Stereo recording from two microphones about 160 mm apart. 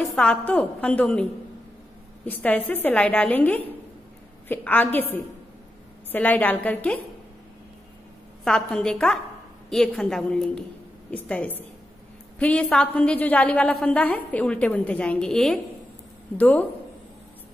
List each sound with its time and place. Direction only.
0.1 s a woman's voice: 5° left (ahead or behind)
2.2 s a woman's voice: 10° left (ahead or behind)
8.5 s a woman's voice: 5° left (ahead or behind)